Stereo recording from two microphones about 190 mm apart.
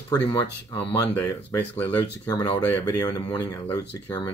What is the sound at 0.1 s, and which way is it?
Speech, 20° left (ahead or behind).